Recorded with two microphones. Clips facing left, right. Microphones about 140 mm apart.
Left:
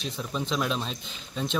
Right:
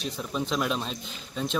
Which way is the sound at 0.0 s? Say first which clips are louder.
Right 1 dB; 5° right (ahead or behind).